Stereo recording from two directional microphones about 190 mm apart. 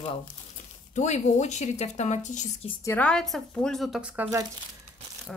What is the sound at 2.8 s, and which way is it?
A woman's voice, 5° left (ahead or behind).